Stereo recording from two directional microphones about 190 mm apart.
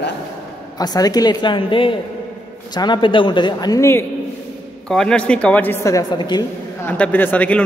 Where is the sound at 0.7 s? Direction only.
20° left (ahead or behind).